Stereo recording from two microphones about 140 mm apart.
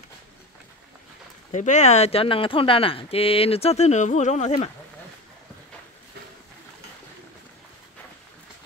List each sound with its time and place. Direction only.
1.5 s speech: 60° left (ahead or behind)